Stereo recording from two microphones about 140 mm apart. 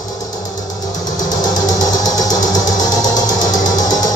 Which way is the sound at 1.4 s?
25° left (ahead or behind).